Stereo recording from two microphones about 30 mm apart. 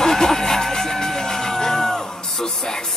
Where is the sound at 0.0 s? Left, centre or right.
Centre.